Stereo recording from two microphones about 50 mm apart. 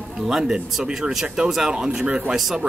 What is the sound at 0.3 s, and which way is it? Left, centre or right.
Speech, centre.